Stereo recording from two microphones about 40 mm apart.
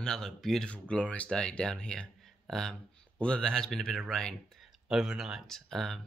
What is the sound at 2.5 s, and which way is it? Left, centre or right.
Speech, centre.